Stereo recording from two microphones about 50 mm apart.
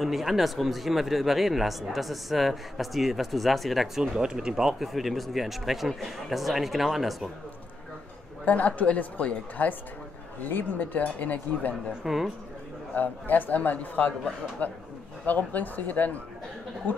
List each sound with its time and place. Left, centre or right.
0.0 s speech: centre
8.5 s a woman's voice: left
12.0 s speech: centre
12.9 s a woman's voice: left